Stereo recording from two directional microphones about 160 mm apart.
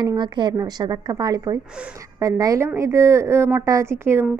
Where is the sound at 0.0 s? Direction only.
25° right (ahead or behind).